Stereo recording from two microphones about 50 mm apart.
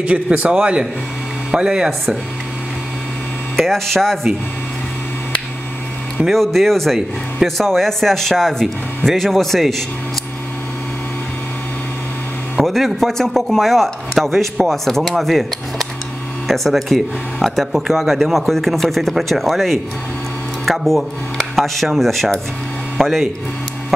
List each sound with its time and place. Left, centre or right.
0.0 s a man's voice: right
3.5 s speech: centre
6.3 s speech: centre
12.6 s speech: centre